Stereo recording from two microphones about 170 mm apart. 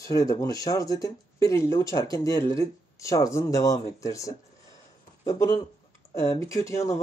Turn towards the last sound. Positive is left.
turn(degrees=20)  # may be behind; listen again after turning